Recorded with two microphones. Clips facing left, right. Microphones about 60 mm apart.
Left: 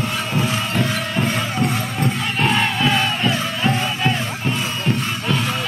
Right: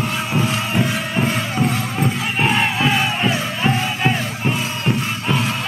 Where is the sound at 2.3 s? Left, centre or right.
Centre.